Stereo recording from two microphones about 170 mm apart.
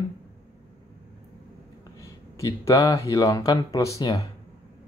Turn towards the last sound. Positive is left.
turn(degrees=20)  # may be behind; listen again after turning